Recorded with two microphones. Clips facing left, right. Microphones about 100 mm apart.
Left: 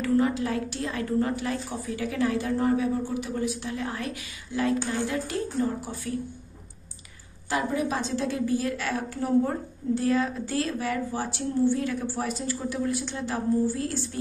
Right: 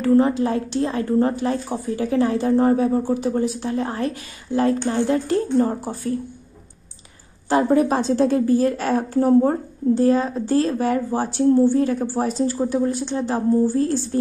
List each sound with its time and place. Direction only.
0.0 s a woman's voice: 35° right (ahead or behind)
7.4 s a woman's voice: 40° right (ahead or behind)